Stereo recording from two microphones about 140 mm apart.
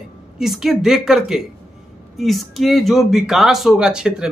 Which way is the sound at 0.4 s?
5° right (ahead or behind).